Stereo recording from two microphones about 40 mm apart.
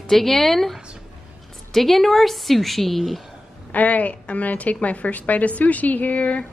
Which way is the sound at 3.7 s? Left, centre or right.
Left.